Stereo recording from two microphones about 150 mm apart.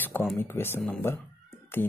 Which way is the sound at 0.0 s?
10° left (ahead or behind).